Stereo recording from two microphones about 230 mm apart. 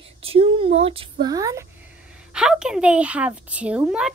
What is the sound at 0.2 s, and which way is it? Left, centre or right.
Speech, right.